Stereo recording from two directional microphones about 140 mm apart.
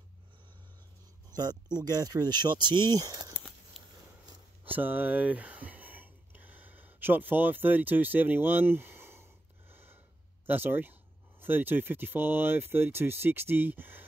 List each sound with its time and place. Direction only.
1.3 s speech: 30° right (ahead or behind)
4.6 s speech: 15° right (ahead or behind)
9.7 s a sound: 15° right (ahead or behind)
10.4 s speech: 15° right (ahead or behind)